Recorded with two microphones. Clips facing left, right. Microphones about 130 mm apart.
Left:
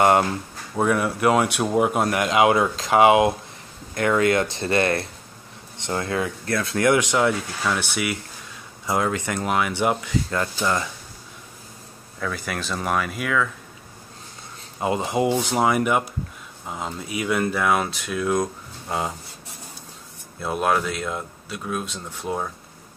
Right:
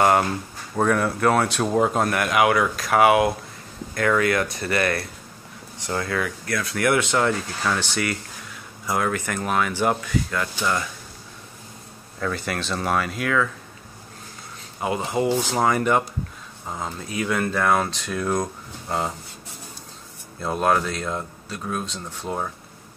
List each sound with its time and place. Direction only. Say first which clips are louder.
0.7 s speech: even; 10° left (ahead or behind)
8.8 s speech: left 1 dB; 20° left (ahead or behind)
12.2 s speech: right 2 dB; centre (ahead or behind)
14.8 s speech: left 1 dB; 20° left (ahead or behind)
20.4 s speech: right 1 dB; 5° left (ahead or behind)